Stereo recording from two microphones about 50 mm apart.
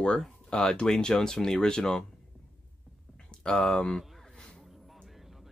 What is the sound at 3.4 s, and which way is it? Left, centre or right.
Speech, centre.